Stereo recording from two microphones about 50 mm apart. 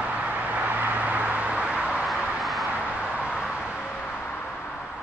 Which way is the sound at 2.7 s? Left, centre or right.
Right.